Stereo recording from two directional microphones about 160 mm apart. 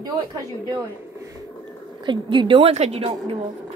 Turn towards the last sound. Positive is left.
turn(degrees=-40)  # may be behind; listen again after turning